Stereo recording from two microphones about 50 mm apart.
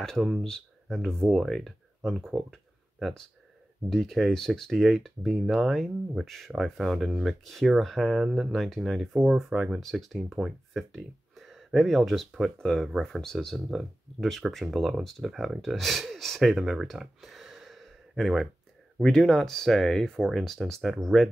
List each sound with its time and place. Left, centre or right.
0.0 s speech: centre
8.2 s speech: centre
8.5 s speech: centre
8.9 s speech: centre
14.5 s speech: centre
19.0 s speech: centre